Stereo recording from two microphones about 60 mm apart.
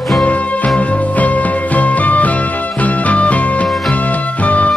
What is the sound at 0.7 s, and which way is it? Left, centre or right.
Music, left.